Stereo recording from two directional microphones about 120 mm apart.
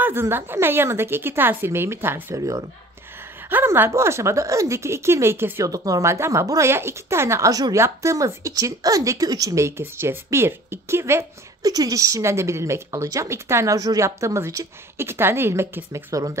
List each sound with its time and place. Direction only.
0.0 s speech: 20° right (ahead or behind)
11.6 s speech: 30° right (ahead or behind)